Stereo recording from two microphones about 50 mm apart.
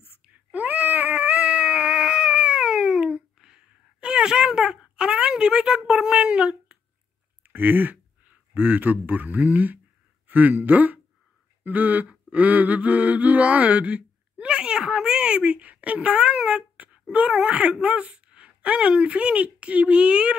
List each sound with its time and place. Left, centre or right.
0.5 s cat: right; by 5.8 s centre
5.9 s speech: centre
7.4 s speech: right
11.6 s a sound: right
17.1 s speech: right